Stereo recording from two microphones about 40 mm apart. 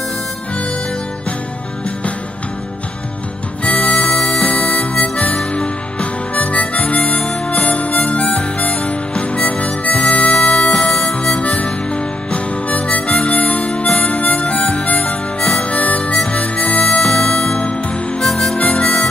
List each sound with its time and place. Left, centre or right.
3.6 s music: left
4.3 s harmonica: left
7.2 s harmonica: centre
8.0 s harmonica: left
9.4 s harmonica: left
17.1 s music: left
18.2 s harmonica: centre
18.6 s harmonica: left